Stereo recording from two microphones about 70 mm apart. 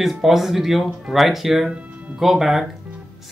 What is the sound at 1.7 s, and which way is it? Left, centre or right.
Music, centre.